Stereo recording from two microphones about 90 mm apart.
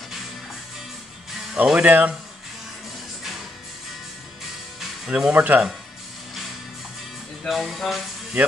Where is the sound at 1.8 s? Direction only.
20° right (ahead or behind).